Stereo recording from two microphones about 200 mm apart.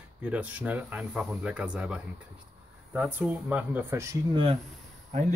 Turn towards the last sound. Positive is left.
turn(degrees=-40)  # may be behind; listen again after turning